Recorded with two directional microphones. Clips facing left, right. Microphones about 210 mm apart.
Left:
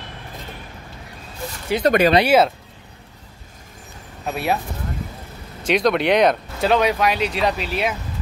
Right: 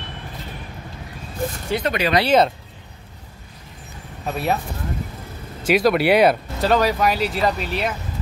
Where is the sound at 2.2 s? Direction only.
5° left (ahead or behind).